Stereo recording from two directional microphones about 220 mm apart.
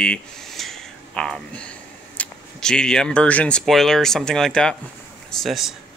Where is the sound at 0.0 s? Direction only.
5° left (ahead or behind).